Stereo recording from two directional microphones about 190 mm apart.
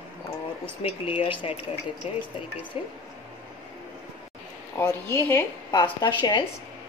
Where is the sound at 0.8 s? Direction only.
30° left (ahead or behind).